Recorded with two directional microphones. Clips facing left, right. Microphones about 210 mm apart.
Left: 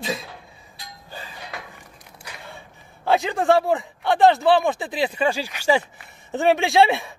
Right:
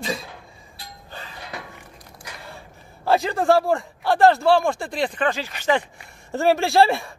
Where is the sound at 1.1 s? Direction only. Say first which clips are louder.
Left 1 dB; 10° left (ahead or behind).